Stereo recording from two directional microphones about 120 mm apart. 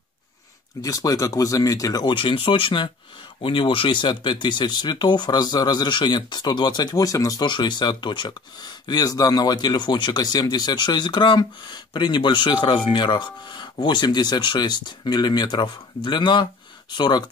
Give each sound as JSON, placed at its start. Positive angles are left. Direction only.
{"t": 0.8, "sound": "speech", "side_deg": 30}
{"t": 2.1, "sound": "speech", "side_deg": 45}